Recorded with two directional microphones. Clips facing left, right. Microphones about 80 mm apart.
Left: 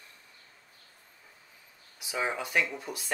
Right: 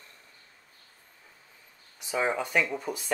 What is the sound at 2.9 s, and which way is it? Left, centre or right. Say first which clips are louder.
Speech: right 5 dB; centre.